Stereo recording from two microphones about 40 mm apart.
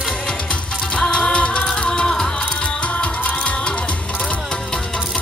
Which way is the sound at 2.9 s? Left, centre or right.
Left.